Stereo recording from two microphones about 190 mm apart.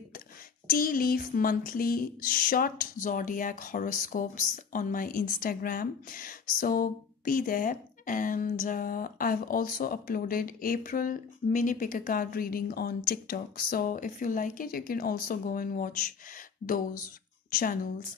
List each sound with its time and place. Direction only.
0.7 s speech: 50° left (ahead or behind)